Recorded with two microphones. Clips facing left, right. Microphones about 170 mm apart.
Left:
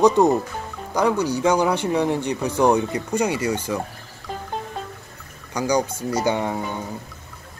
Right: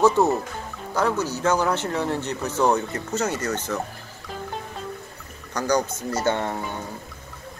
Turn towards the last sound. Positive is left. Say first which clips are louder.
# left 3 dB
turn(degrees=10)  # may be behind; listen again after turning